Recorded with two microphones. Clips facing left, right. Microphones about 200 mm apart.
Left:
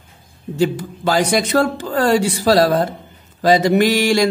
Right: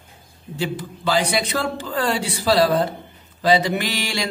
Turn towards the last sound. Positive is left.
turn(degrees=45)  # may be behind; listen again after turning